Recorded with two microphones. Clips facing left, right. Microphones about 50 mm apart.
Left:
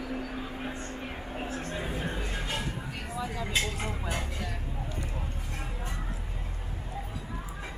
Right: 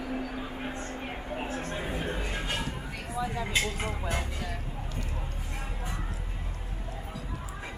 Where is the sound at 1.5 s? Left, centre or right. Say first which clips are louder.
Right 1 dB; right.